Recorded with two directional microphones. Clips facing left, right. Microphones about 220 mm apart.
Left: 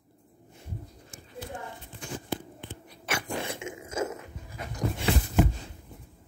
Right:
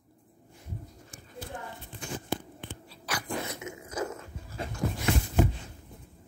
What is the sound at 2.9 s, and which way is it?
Dog, 25° left (ahead or behind).